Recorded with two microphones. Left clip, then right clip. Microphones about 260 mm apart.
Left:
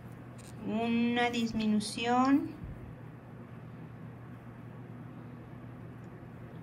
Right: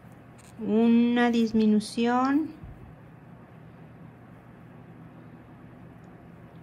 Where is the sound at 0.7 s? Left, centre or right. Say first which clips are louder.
Right 8 dB; right.